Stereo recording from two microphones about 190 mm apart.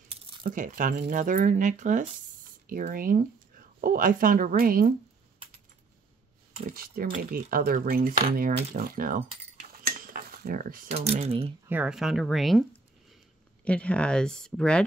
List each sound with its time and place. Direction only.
0.4 s speech: 45° right (ahead or behind)
6.6 s speech: 50° right (ahead or behind)
10.9 s speech: 35° right (ahead or behind)
11.6 s speech: 10° right (ahead or behind)
13.7 s speech: 5° left (ahead or behind)